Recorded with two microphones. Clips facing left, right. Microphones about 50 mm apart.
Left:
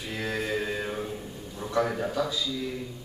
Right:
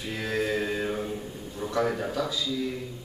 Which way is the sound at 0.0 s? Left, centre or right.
Centre.